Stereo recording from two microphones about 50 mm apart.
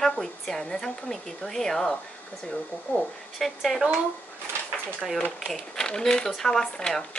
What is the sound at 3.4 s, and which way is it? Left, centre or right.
Speech, centre.